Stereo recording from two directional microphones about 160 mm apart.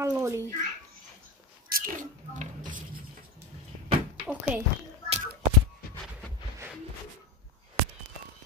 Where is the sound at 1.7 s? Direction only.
55° right (ahead or behind).